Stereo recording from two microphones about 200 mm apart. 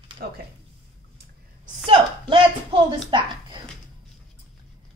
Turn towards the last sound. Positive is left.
turn(degrees=-25)  # may be behind; listen again after turning